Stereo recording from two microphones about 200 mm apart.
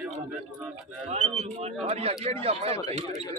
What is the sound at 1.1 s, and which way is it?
Speech, 30° right (ahead or behind).